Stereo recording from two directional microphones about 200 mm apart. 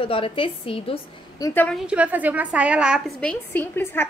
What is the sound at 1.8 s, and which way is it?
A woman's voice, 5° right (ahead or behind).